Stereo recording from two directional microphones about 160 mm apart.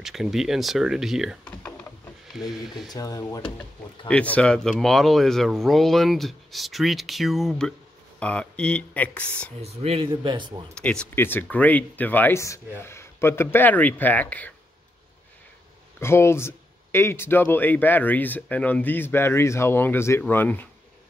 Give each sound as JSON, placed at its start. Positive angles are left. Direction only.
{"t": 0.0, "sound": "speech", "side_deg": 0}
{"t": 2.9, "sound": "speech", "side_deg": 20}
{"t": 4.1, "sound": "speech", "side_deg": 5}
{"t": 9.6, "sound": "speech", "side_deg": -40}
{"t": 10.7, "sound": "speech", "side_deg": 5}
{"t": 16.0, "sound": "speech", "side_deg": 15}